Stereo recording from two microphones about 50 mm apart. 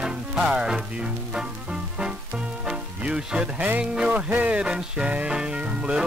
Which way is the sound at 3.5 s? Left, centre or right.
Right.